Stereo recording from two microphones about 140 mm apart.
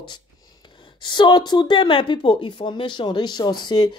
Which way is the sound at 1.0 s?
35° left (ahead or behind).